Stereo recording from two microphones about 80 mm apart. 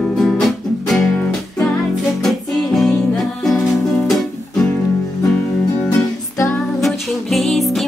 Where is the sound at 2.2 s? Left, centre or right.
Centre.